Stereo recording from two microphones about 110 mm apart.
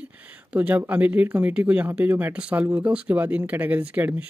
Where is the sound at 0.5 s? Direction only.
15° right (ahead or behind).